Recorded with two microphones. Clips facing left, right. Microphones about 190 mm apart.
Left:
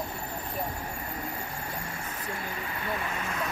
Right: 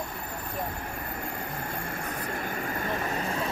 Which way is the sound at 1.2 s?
50° right (ahead or behind).